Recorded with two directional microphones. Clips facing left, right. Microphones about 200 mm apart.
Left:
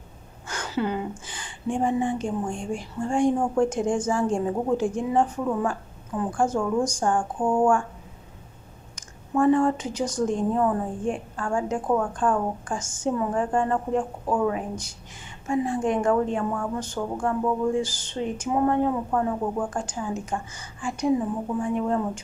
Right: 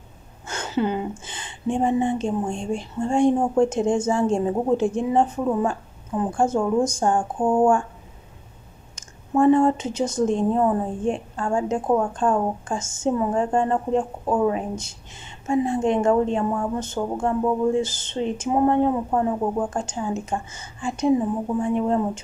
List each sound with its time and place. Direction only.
0.5 s a sound: 25° right (ahead or behind)
1.2 s a woman's voice: 25° right (ahead or behind)
8.9 s a woman's voice: 25° right (ahead or behind)